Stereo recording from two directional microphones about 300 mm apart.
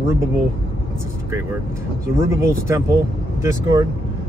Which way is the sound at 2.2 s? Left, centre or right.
Centre.